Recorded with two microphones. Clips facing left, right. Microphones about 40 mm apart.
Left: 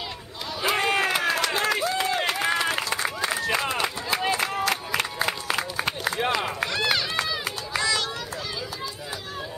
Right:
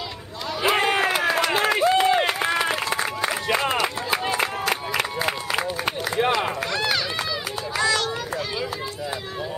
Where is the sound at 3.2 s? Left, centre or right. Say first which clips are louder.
Right 1 dB; right.